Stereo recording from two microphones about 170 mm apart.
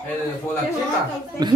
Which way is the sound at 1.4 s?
25° right (ahead or behind).